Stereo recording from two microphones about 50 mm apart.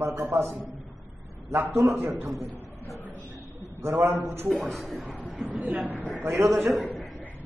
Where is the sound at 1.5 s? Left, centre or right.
Right.